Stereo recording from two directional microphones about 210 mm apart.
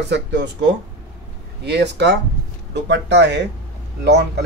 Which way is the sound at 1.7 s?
55° right (ahead or behind).